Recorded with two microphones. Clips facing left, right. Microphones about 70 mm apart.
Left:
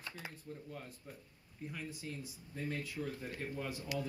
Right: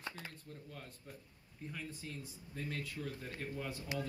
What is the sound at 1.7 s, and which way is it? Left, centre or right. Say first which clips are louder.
Speech: left 1 dB; centre.